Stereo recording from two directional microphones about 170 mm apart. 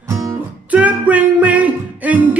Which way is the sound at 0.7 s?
10° right (ahead or behind).